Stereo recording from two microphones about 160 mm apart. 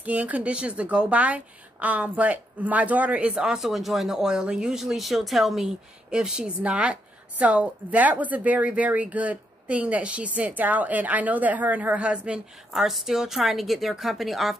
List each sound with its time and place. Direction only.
0.0 s a woman's voice: 10° right (ahead or behind)